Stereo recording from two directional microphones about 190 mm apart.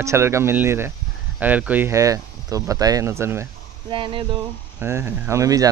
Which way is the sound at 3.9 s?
25° right (ahead or behind).